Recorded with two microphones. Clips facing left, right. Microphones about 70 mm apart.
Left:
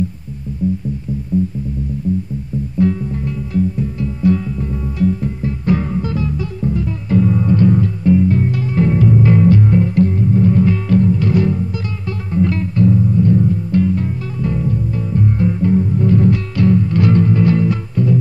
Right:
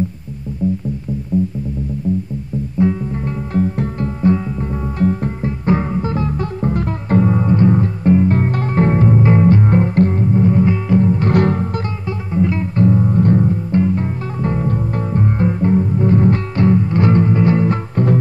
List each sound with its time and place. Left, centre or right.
2.8 s music: right
3.5 s music: right
4.2 s music: right
5.7 s music: right
6.1 s music: right
7.2 s music: right
10.2 s music: right
11.2 s music: right
12.1 s music: centre
12.7 s music: right
13.5 s music: right
17.6 s music: right